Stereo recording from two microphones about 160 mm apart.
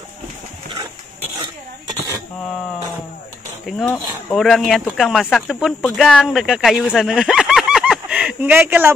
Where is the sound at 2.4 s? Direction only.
5° left (ahead or behind).